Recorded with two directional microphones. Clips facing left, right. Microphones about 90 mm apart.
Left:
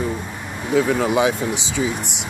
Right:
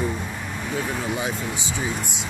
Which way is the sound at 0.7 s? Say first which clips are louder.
Left 10 dB; 75° left (ahead or behind).